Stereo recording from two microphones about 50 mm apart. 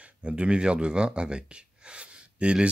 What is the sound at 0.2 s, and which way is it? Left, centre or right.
Speech, right.